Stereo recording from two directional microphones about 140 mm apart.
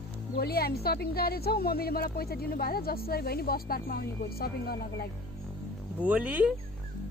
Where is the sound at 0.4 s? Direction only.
90° left.